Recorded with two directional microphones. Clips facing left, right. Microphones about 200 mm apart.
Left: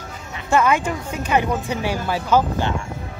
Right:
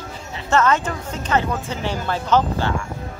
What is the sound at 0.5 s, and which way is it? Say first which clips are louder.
A woman's voice: even; 10° left (ahead or behind).